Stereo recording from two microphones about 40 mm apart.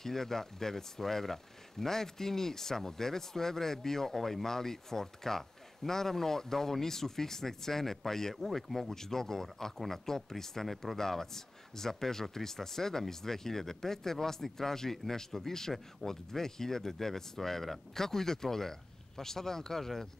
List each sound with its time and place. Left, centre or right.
0.0 s speech: centre